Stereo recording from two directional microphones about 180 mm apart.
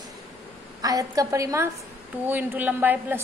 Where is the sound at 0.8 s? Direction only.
20° right (ahead or behind).